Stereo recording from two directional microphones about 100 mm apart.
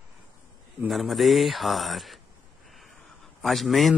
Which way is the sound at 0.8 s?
Centre (ahead or behind).